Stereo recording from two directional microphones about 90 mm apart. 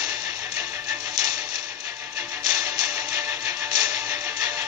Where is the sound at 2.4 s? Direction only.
45° right (ahead or behind).